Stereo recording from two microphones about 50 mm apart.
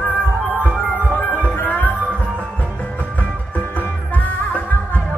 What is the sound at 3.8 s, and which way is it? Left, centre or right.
Music, left.